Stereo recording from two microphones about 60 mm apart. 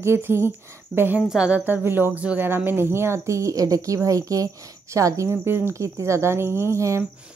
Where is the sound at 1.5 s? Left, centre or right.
Right.